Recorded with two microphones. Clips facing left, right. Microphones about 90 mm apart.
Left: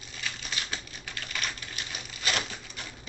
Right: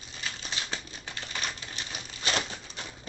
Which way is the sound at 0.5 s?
30° right (ahead or behind).